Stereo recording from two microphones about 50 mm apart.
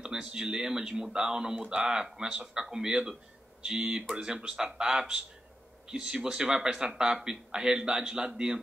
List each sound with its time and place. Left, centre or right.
0.0 s speech: centre